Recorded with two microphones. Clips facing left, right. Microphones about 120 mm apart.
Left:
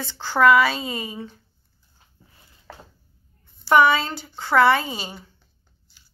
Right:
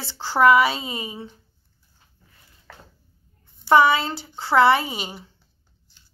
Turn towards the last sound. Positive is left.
turn(degrees=-25)  # may be behind; listen again after turning